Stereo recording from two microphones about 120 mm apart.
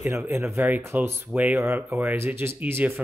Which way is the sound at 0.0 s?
20° right (ahead or behind).